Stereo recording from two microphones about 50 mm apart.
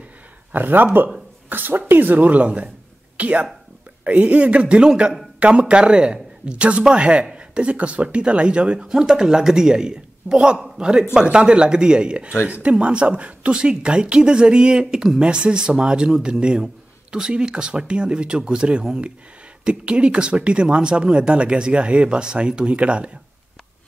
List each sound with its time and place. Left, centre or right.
0.5 s a man's voice: right